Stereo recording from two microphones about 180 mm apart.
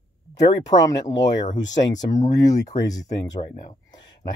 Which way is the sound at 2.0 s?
20° left (ahead or behind).